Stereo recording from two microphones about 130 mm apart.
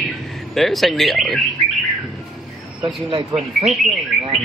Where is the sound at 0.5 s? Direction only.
Centre (ahead or behind).